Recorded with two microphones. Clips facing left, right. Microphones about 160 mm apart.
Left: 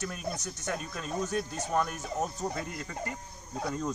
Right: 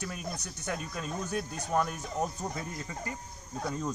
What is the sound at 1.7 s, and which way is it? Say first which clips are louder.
Speech: right 1 dB; centre (ahead or behind).